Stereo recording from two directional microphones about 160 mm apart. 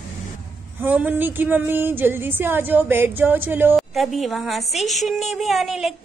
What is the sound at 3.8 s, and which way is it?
A child's voice, centre (ahead or behind).